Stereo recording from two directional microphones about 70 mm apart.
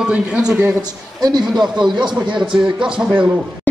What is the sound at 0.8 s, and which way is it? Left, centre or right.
Speech, right.